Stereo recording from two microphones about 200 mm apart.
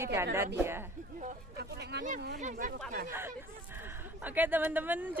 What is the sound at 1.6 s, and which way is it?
Speech, 55° right (ahead or behind).